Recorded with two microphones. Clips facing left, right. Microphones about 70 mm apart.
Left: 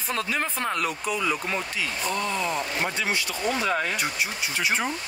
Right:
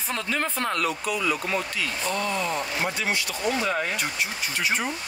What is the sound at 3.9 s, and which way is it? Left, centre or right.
Speech, centre.